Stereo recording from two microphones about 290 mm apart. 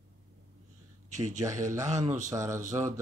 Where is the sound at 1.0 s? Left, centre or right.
Right.